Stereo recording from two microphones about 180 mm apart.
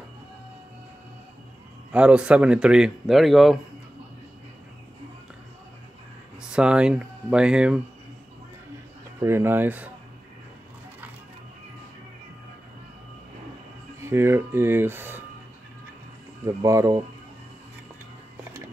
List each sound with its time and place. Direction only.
1.9 s speech: 5° right (ahead or behind)
6.5 s speech: 5° right (ahead or behind)
9.2 s speech: 15° right (ahead or behind)
14.0 s speech: 15° right (ahead or behind)
16.4 s speech: 15° right (ahead or behind)